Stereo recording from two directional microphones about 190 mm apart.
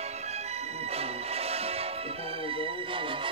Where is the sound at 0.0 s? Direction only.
35° right (ahead or behind).